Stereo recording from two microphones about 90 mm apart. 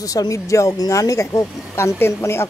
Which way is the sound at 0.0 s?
40° left (ahead or behind).